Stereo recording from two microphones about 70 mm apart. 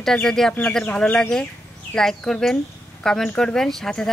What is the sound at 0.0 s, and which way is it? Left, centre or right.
Speech, centre.